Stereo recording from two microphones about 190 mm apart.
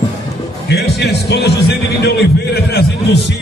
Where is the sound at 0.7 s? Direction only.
60° left (ahead or behind).